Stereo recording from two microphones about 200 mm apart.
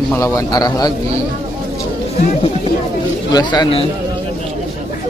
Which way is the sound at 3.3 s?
20° left (ahead or behind).